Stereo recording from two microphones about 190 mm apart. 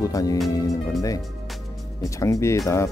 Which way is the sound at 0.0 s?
20° left (ahead or behind).